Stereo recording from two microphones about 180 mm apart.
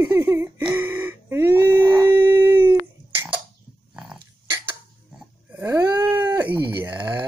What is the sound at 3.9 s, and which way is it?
Dog, 5° right (ahead or behind).